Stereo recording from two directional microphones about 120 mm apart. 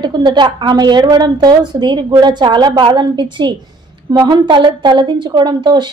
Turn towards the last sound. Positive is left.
turn(degrees=-40)  # may be behind; listen again after turning